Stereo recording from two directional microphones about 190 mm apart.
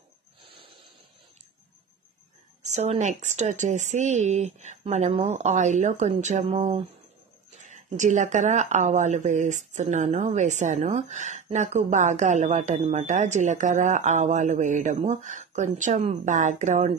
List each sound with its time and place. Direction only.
0.4 s a sound: 25° right (ahead or behind)
2.6 s speech: 35° right (ahead or behind)
8.0 s speech: 40° right (ahead or behind)